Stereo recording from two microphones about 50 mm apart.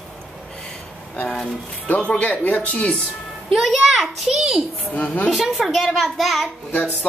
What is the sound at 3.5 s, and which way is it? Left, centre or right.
A child's voice, centre.